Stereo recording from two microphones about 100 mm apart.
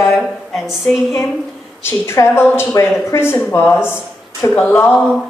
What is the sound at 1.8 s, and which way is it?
A woman's voice, 25° left (ahead or behind).